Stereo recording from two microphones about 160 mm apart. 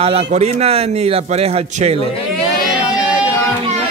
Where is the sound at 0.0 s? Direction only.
35° right (ahead or behind).